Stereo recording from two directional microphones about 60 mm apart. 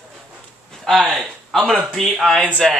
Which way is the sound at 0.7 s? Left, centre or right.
Centre.